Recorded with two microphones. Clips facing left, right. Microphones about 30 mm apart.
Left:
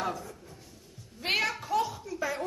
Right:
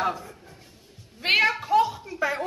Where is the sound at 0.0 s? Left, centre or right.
Right.